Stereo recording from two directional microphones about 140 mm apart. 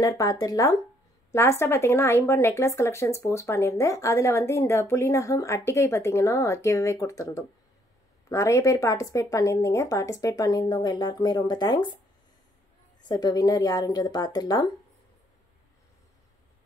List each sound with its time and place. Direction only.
0.0 s speech: 25° left (ahead or behind)
13.1 s speech: 30° left (ahead or behind)